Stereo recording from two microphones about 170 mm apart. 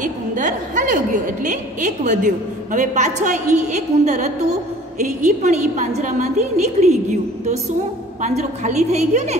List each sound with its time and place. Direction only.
0.0 s a woman's voice: 50° right (ahead or behind)